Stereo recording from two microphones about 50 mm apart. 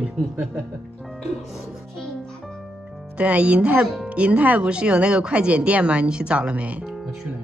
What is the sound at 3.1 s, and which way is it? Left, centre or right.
Speech, right.